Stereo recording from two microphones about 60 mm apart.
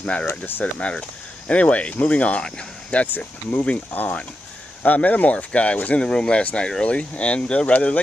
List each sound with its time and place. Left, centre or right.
0.0 s speech: centre
3.1 s speech: left